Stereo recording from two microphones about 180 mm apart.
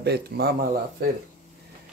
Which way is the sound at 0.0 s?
65° right (ahead or behind).